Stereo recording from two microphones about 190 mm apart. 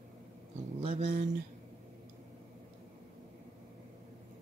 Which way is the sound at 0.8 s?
30° right (ahead or behind).